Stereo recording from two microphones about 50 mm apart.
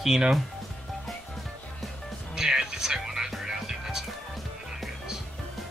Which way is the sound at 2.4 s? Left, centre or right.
Centre.